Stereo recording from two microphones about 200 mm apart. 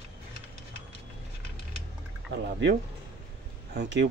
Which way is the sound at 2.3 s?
55° right (ahead or behind).